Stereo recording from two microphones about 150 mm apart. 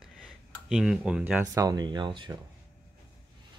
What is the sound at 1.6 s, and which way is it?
Speech, 25° right (ahead or behind).